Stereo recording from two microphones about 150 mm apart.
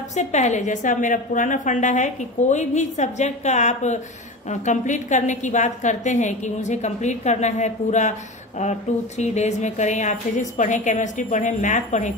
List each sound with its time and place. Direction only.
0.1 s a woman's voice: 50° left (ahead or behind)